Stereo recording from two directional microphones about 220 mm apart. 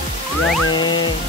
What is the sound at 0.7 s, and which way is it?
Music, 20° left (ahead or behind).